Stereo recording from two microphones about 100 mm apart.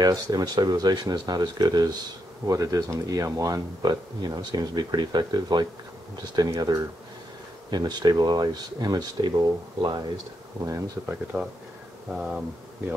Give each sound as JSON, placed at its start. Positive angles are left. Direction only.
{"t": 0.0, "sound": "speech", "side_deg": -40}
{"t": 10.6, "sound": "speech", "side_deg": -30}
{"t": 12.1, "sound": "speech", "side_deg": -10}